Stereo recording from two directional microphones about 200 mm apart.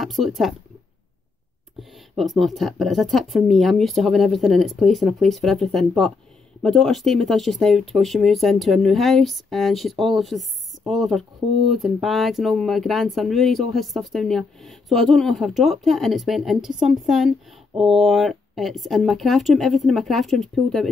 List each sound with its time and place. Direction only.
0.0 s speech: centre (ahead or behind)
1.8 s speech: centre (ahead or behind)